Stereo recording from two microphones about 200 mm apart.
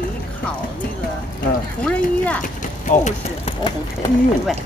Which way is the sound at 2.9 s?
35° left (ahead or behind).